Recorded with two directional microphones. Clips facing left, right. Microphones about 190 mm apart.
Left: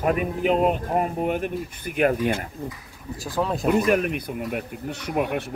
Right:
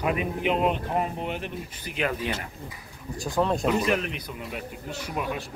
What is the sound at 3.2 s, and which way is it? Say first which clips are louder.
Speech: right 1 dB; centre (ahead or behind).